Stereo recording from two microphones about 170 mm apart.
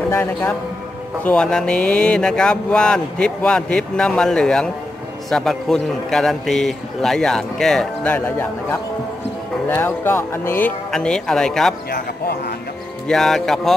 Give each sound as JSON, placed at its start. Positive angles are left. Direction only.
{"t": 0.1, "sound": "speech", "side_deg": 15}
{"t": 11.9, "sound": "speech", "side_deg": 65}
{"t": 13.1, "sound": "speech", "side_deg": 0}